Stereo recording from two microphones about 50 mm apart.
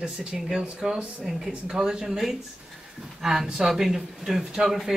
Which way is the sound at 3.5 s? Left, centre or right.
Centre.